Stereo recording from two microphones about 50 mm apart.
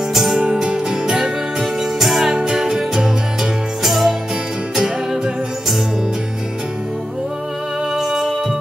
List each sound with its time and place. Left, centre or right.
0.1 s music: centre
0.4 s music: centre
2.3 s music: centre
4.7 s music: centre
7.9 s music: centre